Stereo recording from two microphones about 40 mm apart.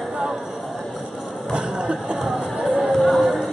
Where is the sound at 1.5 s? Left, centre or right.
Right.